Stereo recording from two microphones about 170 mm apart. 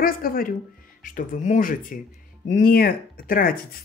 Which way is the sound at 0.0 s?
60° left (ahead or behind).